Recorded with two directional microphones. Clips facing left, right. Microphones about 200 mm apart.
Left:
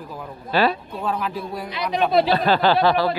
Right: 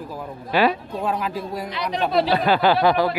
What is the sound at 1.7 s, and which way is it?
Speech, 15° left (ahead or behind).